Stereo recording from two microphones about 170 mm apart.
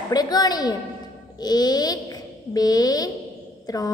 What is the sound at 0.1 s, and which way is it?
A woman's voice, 25° left (ahead or behind).